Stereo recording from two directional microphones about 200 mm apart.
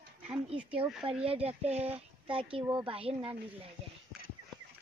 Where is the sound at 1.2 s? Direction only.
30° right (ahead or behind).